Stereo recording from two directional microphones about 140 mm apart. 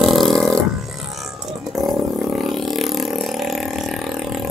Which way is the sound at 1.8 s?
Centre (ahead or behind).